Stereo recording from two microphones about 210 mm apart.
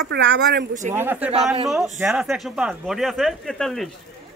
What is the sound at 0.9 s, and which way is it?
Speech, 10° right (ahead or behind).